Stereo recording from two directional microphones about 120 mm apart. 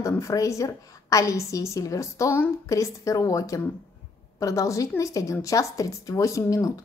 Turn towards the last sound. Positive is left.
turn(degrees=30)  # may be behind; listen again after turning